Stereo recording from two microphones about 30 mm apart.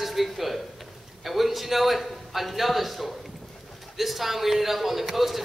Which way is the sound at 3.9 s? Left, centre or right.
Centre.